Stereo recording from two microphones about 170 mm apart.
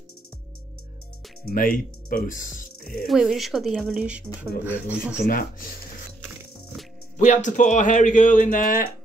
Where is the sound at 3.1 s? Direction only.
Centre (ahead or behind).